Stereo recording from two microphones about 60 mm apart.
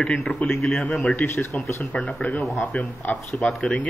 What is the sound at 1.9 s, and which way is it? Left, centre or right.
Speech, left.